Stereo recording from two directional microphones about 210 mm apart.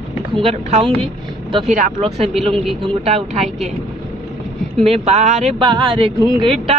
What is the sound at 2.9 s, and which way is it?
Speech, 25° right (ahead or behind).